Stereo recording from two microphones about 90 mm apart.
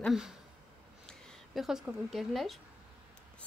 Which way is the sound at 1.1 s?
5° left (ahead or behind).